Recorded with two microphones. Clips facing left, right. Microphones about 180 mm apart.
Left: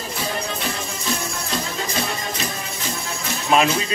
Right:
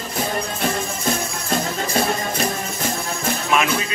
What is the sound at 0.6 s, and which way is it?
Music, 50° right (ahead or behind).